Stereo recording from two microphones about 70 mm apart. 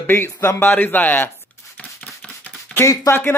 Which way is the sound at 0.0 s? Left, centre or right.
Left.